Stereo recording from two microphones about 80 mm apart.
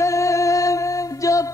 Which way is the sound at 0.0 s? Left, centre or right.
Left.